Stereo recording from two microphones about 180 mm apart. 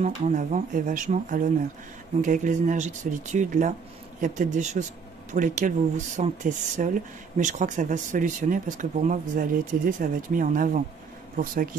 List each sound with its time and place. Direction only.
0.0 s speech: 45° right (ahead or behind)